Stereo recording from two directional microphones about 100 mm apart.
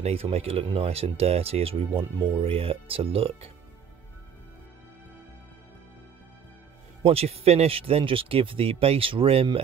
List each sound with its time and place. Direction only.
0.0 s speech: 85° right
0.7 s speech: 75° right (ahead or behind)
2.1 s speech: 55° right (ahead or behind); by 3.4 s 70° right (ahead or behind)
7.0 s speech: 80° right